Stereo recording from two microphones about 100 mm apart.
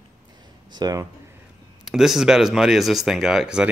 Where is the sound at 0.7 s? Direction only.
40° right (ahead or behind).